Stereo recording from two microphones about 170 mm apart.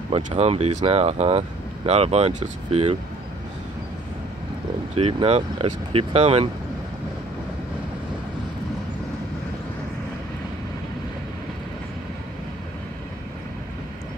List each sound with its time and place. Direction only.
0.1 s speech: 35° right (ahead or behind)
4.9 s speech: 35° right (ahead or behind)